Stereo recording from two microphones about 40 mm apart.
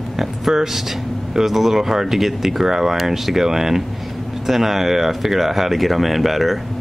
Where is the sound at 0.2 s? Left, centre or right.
Centre.